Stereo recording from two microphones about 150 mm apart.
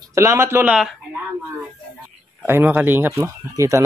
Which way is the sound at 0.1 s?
20° right (ahead or behind).